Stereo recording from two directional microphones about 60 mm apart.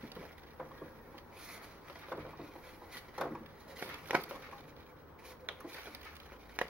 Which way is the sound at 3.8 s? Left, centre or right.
Right.